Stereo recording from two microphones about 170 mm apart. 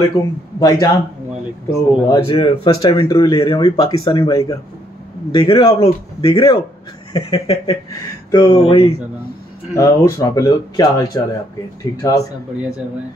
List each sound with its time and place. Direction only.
0.2 s a man's voice: 15° left (ahead or behind)
2.2 s a man's voice: 30° left (ahead or behind)
9.8 s speech: 20° left (ahead or behind)